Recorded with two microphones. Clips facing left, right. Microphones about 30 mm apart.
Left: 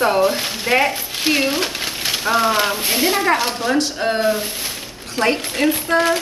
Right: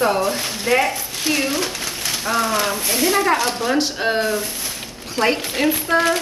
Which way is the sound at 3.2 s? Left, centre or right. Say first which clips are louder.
Even; centre.